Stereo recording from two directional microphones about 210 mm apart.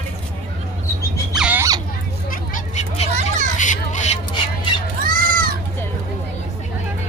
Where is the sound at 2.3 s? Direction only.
35° left (ahead or behind).